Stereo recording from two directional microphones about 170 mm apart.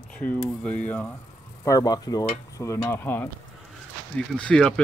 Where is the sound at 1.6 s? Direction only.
20° left (ahead or behind).